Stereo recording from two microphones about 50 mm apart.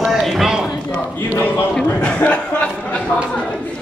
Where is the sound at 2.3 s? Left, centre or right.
Left.